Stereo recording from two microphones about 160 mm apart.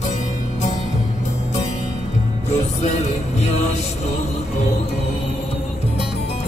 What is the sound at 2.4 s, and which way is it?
Music, 45° left (ahead or behind).